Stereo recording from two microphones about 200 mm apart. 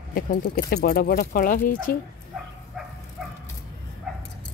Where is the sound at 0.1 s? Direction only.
50° left (ahead or behind).